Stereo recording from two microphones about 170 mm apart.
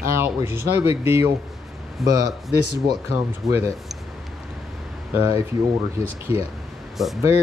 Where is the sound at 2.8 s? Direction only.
20° right (ahead or behind).